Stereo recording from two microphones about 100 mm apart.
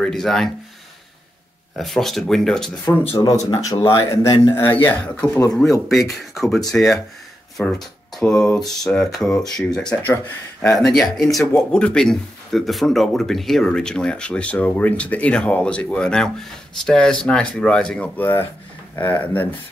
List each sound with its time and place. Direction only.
0.0 s speech: 5° left (ahead or behind)
1.8 s speech: centre (ahead or behind)
2.9 s speech: 20° left (ahead or behind)
3.3 s speech: 35° left (ahead or behind)
4.6 s speech: 20° left (ahead or behind)